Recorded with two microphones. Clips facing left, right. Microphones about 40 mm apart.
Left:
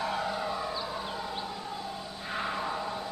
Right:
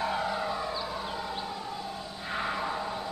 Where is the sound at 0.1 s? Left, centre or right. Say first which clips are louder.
Right 1 dB; centre.